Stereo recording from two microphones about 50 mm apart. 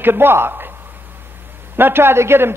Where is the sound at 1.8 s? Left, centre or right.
Right.